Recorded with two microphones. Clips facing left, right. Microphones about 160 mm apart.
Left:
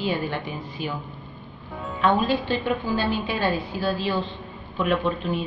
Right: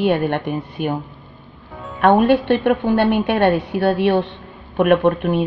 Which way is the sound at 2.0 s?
65° right (ahead or behind).